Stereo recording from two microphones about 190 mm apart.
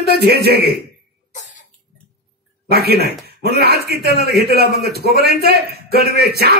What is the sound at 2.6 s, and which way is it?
A man's voice, 55° right (ahead or behind).